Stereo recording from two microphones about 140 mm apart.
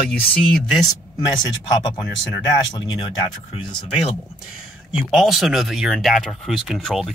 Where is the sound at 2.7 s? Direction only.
30° left (ahead or behind).